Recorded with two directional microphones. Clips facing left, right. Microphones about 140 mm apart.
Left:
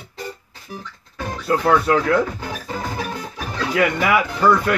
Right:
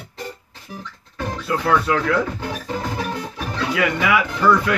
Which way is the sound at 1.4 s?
45° left (ahead or behind).